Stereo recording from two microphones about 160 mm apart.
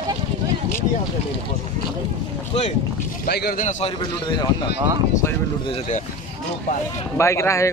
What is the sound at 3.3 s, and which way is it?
Speech, 75° left (ahead or behind).